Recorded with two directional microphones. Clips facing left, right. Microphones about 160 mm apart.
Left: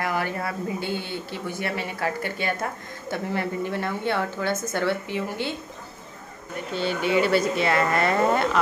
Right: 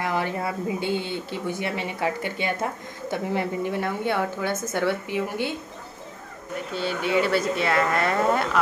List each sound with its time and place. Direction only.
0.0 s speech: 20° right (ahead or behind)
6.7 s speech: centre (ahead or behind)